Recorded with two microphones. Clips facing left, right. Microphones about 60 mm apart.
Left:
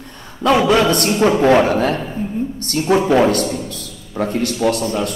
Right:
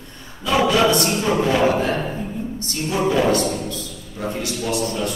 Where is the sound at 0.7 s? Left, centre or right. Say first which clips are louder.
Left 3 dB; left.